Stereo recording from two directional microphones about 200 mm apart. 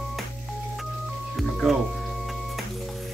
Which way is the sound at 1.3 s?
Centre (ahead or behind).